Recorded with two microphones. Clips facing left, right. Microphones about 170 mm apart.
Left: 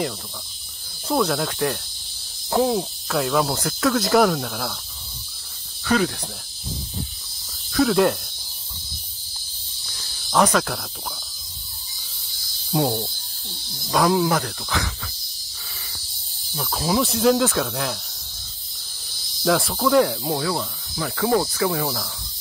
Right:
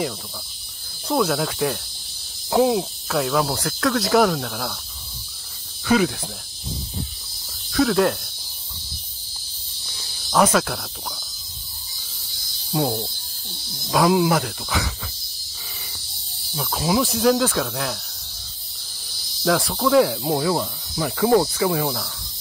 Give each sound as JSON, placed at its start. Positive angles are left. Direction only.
{"t": 1.0, "sound": "cricket", "side_deg": 0}
{"t": 5.9, "sound": "speech", "side_deg": -5}
{"t": 7.7, "sound": "cricket", "side_deg": 0}
{"t": 10.3, "sound": "cricket", "side_deg": 0}
{"t": 12.7, "sound": "cricket", "side_deg": 0}
{"t": 16.5, "sound": "cricket", "side_deg": 0}
{"t": 19.0, "sound": "insect", "side_deg": 0}
{"t": 20.2, "sound": "speech", "side_deg": -20}
{"t": 21.5, "sound": "cricket", "side_deg": -10}